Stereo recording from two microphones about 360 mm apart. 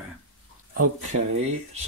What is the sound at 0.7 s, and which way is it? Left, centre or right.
Speech, right.